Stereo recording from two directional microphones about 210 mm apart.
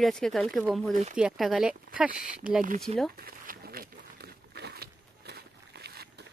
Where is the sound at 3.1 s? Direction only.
45° right (ahead or behind).